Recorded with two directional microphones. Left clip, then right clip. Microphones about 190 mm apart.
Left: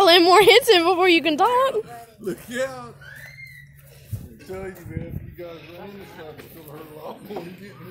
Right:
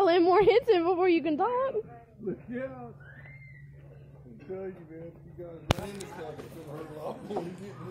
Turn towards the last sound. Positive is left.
turn(degrees=25)  # may be behind; listen again after turning